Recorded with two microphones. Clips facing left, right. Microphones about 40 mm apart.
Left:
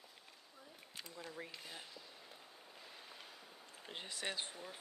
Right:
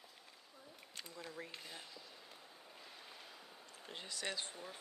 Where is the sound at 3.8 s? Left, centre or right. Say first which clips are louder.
Even; left.